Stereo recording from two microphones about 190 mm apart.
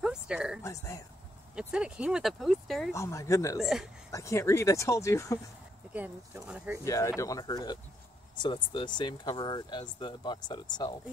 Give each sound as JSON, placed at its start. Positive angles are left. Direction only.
{"t": 0.0, "sound": "a sound", "side_deg": -5}
{"t": 0.6, "sound": "speech", "side_deg": 15}
{"t": 1.5, "sound": "speech", "side_deg": -5}
{"t": 2.9, "sound": "speech", "side_deg": 15}
{"t": 3.5, "sound": "speech", "side_deg": 0}
{"t": 4.1, "sound": "speech", "side_deg": 15}
{"t": 5.9, "sound": "speech", "side_deg": -10}
{"t": 6.8, "sound": "speech", "side_deg": 15}